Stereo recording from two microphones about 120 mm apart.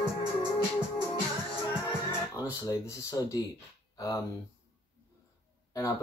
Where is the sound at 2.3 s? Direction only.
25° left (ahead or behind).